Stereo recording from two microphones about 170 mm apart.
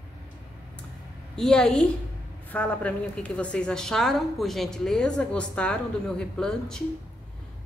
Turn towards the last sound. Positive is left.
turn(degrees=5)  # may be behind; listen again after turning